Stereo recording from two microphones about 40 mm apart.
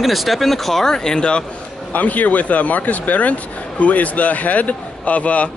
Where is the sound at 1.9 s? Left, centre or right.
Left.